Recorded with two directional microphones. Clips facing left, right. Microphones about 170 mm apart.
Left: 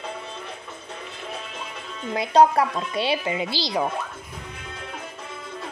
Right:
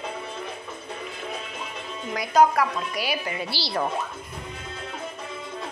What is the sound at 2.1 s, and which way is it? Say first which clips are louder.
Speech: left 2 dB; 30° left (ahead or behind).